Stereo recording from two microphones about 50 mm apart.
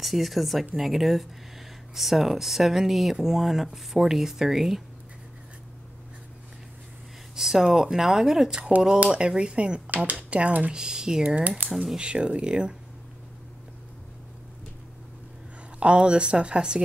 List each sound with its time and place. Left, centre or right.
0.0 s speech: centre
7.3 s speech: centre; by 10.7 s right
10.7 s speech: centre
11.2 s speech: right
11.8 s speech: centre
15.8 s speech: right